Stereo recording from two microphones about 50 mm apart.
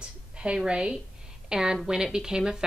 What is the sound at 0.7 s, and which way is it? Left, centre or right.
A woman's voice, centre.